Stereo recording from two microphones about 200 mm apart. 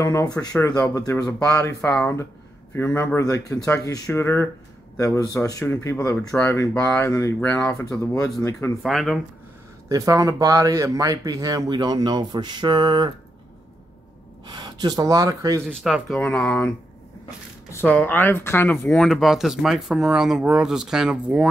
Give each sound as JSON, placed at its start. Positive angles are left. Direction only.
{"t": 0.0, "sound": "speech", "side_deg": 15}
{"t": 8.8, "sound": "speech", "side_deg": 0}
{"t": 9.8, "sound": "speech", "side_deg": -15}
{"t": 14.5, "sound": "speech", "side_deg": -20}
{"t": 15.7, "sound": "speech", "side_deg": 0}